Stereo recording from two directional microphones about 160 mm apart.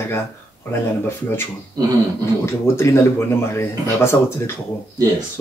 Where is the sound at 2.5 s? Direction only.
15° left (ahead or behind).